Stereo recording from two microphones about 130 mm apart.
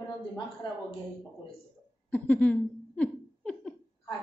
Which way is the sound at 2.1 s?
10° left (ahead or behind).